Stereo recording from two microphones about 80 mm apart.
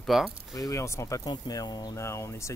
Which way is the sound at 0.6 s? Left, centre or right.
Left.